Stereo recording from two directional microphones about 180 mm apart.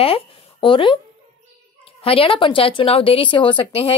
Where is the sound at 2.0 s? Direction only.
30° left (ahead or behind).